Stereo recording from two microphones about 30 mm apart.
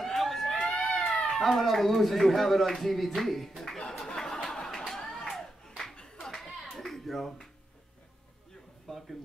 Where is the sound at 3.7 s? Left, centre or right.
Left.